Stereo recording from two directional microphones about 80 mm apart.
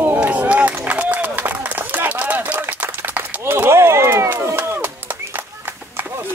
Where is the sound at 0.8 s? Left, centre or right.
Centre.